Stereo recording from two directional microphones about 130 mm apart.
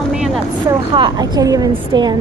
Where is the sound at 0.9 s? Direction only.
40° right (ahead or behind).